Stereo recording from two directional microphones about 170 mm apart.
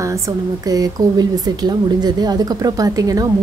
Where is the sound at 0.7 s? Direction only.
20° right (ahead or behind).